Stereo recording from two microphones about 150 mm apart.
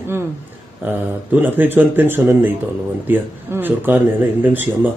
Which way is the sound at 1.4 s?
10° right (ahead or behind).